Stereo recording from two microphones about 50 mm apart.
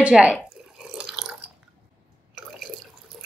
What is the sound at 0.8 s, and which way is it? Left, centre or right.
Drip, centre.